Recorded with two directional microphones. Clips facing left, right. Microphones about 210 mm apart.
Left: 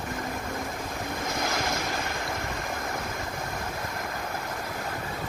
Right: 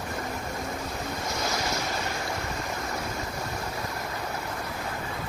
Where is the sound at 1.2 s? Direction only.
50° left (ahead or behind).